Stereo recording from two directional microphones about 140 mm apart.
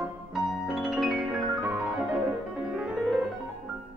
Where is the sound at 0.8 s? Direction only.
Centre (ahead or behind).